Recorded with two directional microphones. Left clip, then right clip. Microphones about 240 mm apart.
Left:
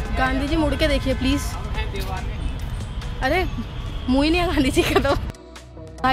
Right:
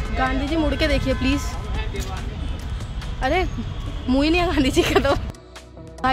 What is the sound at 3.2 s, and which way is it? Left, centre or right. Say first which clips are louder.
Speech: even; centre.